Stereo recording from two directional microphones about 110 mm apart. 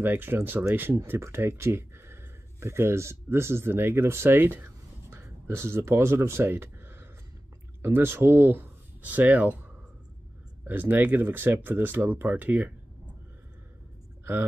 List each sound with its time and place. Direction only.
0.0 s speech: 15° right (ahead or behind)
10.6 s speech: 15° right (ahead or behind)